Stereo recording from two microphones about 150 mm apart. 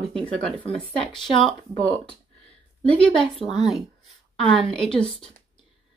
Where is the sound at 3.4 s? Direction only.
35° left (ahead or behind).